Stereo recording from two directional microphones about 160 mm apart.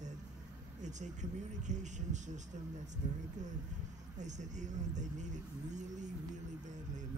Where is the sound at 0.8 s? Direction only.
50° right (ahead or behind).